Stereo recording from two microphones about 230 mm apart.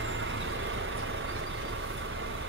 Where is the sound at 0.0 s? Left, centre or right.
Right.